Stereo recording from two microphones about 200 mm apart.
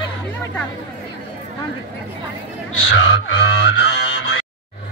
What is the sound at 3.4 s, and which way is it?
Mantra, 60° left (ahead or behind).